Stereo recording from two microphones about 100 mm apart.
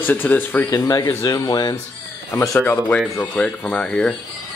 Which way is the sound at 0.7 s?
35° left (ahead or behind).